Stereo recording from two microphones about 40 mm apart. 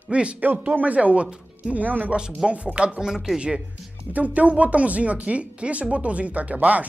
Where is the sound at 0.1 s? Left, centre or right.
Right.